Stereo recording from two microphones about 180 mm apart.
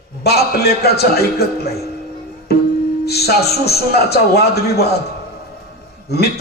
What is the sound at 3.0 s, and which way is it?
A man's voice, 60° left (ahead or behind).